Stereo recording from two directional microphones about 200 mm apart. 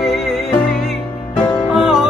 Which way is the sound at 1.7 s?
Centre (ahead or behind).